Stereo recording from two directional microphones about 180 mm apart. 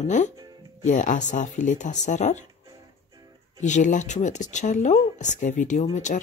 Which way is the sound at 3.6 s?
45° left (ahead or behind).